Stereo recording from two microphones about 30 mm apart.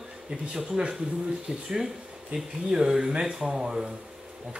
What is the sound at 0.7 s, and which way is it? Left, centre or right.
Speech, right.